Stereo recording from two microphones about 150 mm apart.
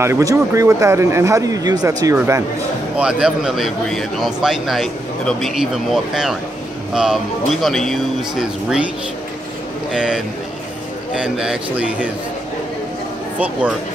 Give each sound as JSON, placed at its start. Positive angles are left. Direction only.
{"t": 0.0, "sound": "speech", "side_deg": -20}
{"t": 3.0, "sound": "speech", "side_deg": -5}
{"t": 9.9, "sound": "speech", "side_deg": -5}